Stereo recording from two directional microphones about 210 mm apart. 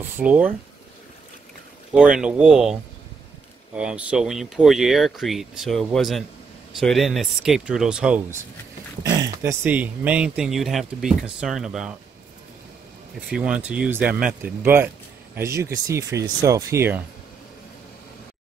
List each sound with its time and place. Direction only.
0.0 s speech: 5° right (ahead or behind)
2.0 s speech: 5° right (ahead or behind)
13.3 s speech: 5° right (ahead or behind)